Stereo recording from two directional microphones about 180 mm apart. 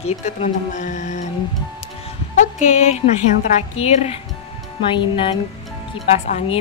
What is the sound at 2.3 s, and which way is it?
Speech, 40° left (ahead or behind).